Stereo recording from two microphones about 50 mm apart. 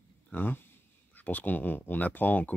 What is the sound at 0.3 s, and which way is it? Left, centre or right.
Speech, left.